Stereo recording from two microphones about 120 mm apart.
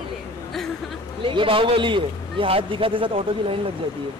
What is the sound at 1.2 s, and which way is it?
A man's voice, 45° right (ahead or behind).